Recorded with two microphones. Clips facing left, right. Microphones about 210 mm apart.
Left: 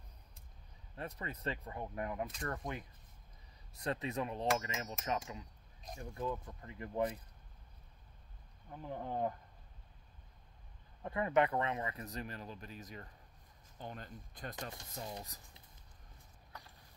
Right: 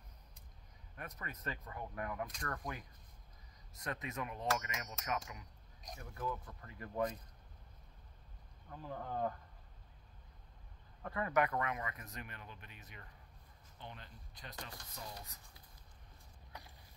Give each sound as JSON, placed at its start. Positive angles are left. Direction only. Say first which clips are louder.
{"t": 0.9, "sound": "speech", "louder": "left 5 dB", "side_deg": 30}
{"t": 8.6, "sound": "speech", "louder": "left 2 dB", "side_deg": 20}
{"t": 11.0, "sound": "speech", "louder": "left 3 dB", "side_deg": 20}
{"t": 14.8, "sound": "speech", "louder": "left 5 dB", "side_deg": 25}